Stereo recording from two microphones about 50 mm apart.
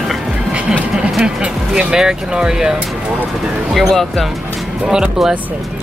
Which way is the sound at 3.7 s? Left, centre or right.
Centre.